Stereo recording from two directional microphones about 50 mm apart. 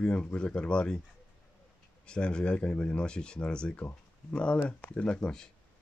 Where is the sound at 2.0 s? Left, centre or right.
Centre.